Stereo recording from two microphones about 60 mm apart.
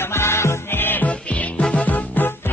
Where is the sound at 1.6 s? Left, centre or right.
Left.